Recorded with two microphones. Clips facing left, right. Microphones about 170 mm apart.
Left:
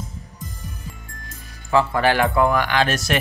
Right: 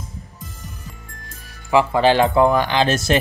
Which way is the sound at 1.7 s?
15° right (ahead or behind).